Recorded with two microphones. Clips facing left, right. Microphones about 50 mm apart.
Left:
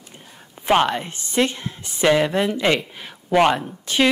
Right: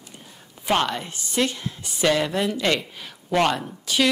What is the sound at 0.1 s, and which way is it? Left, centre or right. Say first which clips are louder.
A woman's voice: left 2 dB; centre.